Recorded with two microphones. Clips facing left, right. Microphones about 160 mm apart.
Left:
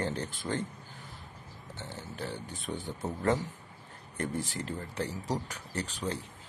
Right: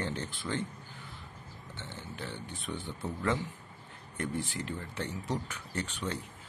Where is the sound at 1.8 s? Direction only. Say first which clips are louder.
Left 3 dB; 40° left (ahead or behind).